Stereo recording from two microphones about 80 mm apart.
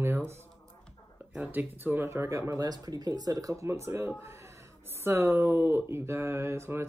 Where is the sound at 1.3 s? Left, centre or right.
Centre.